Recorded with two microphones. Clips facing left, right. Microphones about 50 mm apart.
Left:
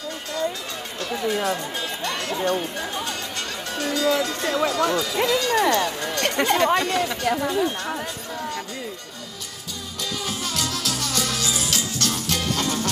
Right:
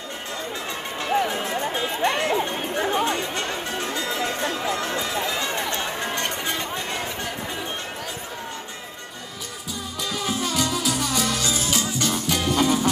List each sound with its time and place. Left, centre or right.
1.3 s music: right
4.9 s speech: right
5.3 s music: right
6.2 s speech: left
10.2 s music: centre